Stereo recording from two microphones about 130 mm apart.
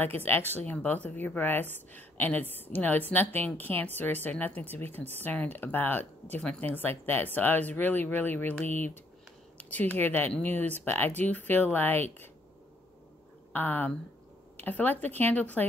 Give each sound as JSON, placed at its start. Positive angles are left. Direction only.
{"t": 0.0, "sound": "speech", "side_deg": 15}
{"t": 13.5, "sound": "speech", "side_deg": 15}